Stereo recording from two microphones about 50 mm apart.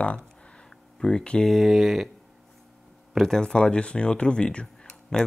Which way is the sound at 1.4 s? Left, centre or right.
Centre.